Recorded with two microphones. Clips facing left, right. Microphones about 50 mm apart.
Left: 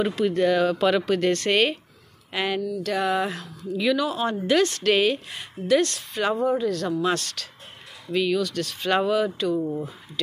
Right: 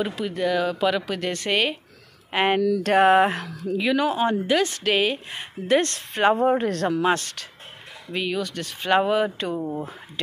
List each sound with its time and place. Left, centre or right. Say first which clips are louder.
0.0 s speech: left 4 dB; centre
2.3 s speech: right 5 dB; right
2.8 s a sound: right 8 dB; right
3.7 s speech: right 1 dB; right
4.5 s speech: left 1 dB; centre
5.3 s speech: even; right
6.3 s a sound: right 2 dB; right
7.1 s speech: right 3 dB; right